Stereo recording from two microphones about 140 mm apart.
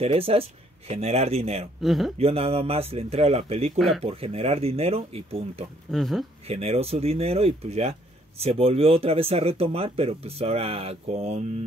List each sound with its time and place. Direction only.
0.0 s speech: 45° right (ahead or behind)
1.8 s speech: centre (ahead or behind)
2.1 s speech: 45° right (ahead or behind)
3.7 s speech: centre (ahead or behind)
4.0 s speech: 45° right (ahead or behind)
5.9 s speech: centre (ahead or behind)
6.4 s speech: 45° right (ahead or behind)